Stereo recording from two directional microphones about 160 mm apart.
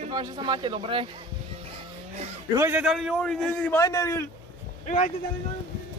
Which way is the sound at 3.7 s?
20° left (ahead or behind).